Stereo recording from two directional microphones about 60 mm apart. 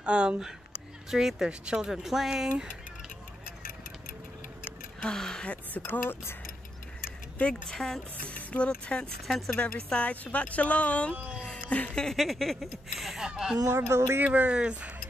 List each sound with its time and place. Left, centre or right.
0.0 s speech: centre
5.0 s speech: centre
5.5 s speech: left
7.7 s speech: centre
8.3 s speech: left
11.9 s speech: centre
13.7 s speech: right
14.2 s speech: right